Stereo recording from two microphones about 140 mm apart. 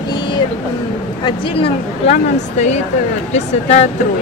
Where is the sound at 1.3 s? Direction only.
40° left (ahead or behind).